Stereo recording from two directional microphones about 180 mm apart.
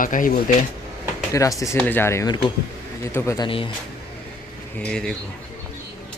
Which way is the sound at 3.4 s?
30° left (ahead or behind).